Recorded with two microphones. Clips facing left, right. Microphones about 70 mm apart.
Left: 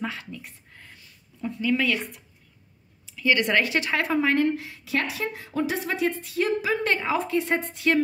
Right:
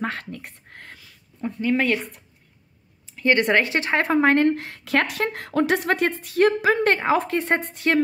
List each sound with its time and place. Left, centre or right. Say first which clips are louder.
0.0 s speech: right 4 dB; right
1.4 s speech: right 2 dB; right